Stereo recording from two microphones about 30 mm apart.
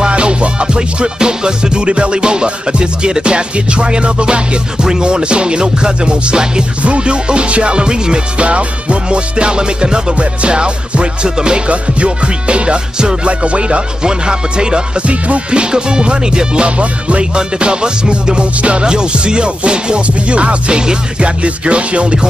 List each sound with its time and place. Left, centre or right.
0.0 s music: right
6.8 s music: right
8.4 s music: right
11.7 s music: right
15.0 s music: right
15.6 s music: right
16.6 s music: right
17.4 s music: right